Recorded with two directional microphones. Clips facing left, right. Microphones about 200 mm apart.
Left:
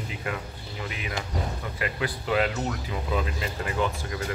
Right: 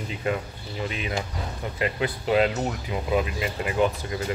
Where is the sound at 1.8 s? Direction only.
25° right (ahead or behind).